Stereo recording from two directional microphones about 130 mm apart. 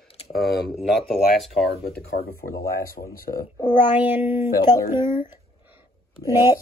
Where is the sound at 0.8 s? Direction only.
Centre (ahead or behind).